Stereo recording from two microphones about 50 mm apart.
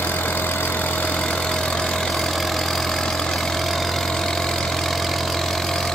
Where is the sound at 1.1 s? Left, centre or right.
Centre.